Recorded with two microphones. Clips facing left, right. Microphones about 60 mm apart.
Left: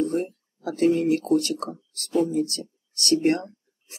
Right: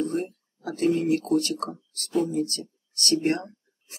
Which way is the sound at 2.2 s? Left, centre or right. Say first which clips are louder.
Left 2 dB; right.